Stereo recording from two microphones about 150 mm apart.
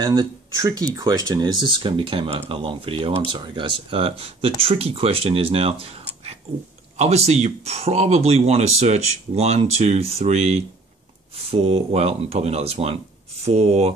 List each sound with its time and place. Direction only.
0.0 s speech: 25° right (ahead or behind); by 13.9 s 45° right (ahead or behind)